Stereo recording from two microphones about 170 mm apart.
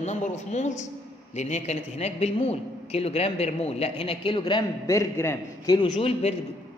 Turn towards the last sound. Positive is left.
turn(degrees=35)  # may be behind; listen again after turning